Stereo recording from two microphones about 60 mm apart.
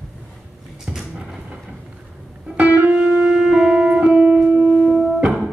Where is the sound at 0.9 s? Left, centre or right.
Centre.